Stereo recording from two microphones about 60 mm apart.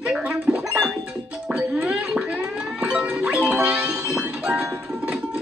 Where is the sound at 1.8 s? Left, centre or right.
Centre.